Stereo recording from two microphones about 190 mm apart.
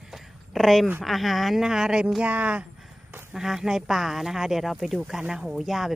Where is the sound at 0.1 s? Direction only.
Centre (ahead or behind).